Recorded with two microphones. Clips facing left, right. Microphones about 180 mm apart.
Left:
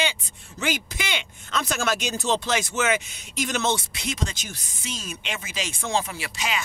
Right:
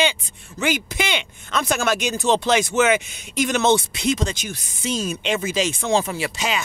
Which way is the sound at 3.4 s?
70° right (ahead or behind).